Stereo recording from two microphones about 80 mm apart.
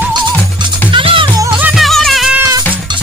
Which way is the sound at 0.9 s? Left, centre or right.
Right.